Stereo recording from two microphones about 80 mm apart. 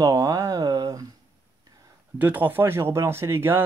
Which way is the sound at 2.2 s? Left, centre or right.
Right.